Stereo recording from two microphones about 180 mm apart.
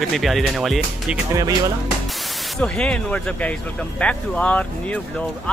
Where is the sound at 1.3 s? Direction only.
20° right (ahead or behind).